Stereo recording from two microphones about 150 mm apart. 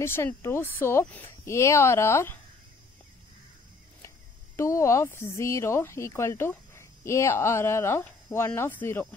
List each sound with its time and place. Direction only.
0.0 s speech: 15° left (ahead or behind)
4.6 s speech: 20° left (ahead or behind)